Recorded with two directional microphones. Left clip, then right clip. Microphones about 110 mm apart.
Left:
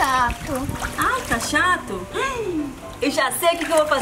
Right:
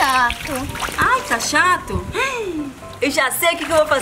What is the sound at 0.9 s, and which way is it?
Speech, 20° right (ahead or behind).